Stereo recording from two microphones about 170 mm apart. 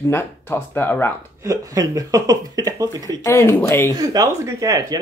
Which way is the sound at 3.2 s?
15° left (ahead or behind).